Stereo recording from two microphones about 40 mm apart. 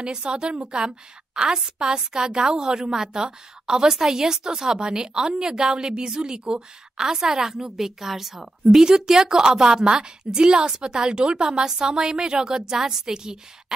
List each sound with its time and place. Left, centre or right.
0.0 s a woman's voice: centre